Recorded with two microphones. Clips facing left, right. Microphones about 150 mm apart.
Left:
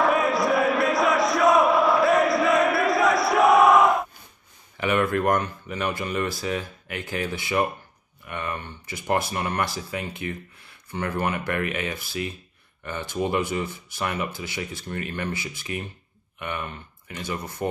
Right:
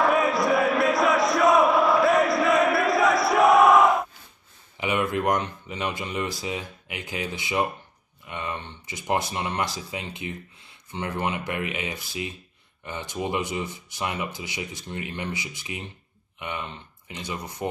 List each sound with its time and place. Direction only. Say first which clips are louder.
0.0 s crowd: even; centre (ahead or behind)
4.7 s speech: left 3 dB; 15° right (ahead or behind)